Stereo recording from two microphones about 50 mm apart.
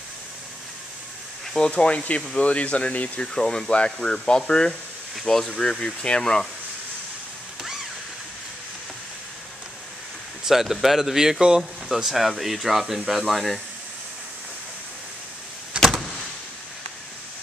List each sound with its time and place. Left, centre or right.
1.7 s speech: left
3.3 s speech: centre
10.4 s speech: centre
15.8 s vehicle: centre